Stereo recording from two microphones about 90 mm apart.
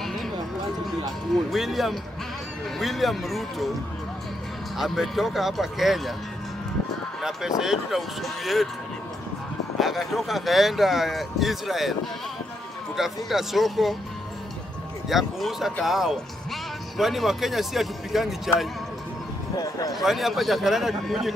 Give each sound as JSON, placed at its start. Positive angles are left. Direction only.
{"t": 1.5, "sound": "speech", "side_deg": 0}
{"t": 4.7, "sound": "speech", "side_deg": 0}
{"t": 7.2, "sound": "speech", "side_deg": -5}
{"t": 9.8, "sound": "speech", "side_deg": 0}
{"t": 12.9, "sound": "speech", "side_deg": -5}
{"t": 15.0, "sound": "speech", "side_deg": 0}
{"t": 19.5, "sound": "speech", "side_deg": 45}
{"t": 19.9, "sound": "speech", "side_deg": 0}